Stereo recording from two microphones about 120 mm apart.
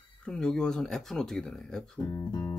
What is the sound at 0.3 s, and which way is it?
Speech, 5° left (ahead or behind).